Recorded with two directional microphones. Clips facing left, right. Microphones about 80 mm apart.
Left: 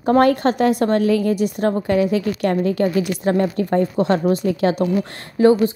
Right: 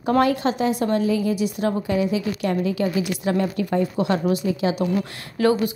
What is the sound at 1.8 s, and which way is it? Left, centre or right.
A woman's voice, left.